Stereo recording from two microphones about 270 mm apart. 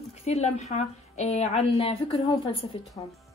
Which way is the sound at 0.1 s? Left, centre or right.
Left.